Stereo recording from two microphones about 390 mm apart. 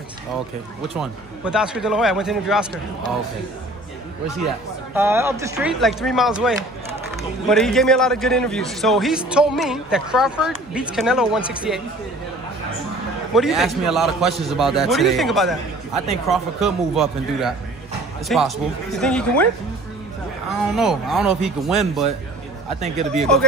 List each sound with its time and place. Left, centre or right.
0.9 s a man's voice: centre
4.9 s a man's voice: centre
13.3 s a man's voice: centre
20.7 s a man's voice: centre
22.9 s speech: centre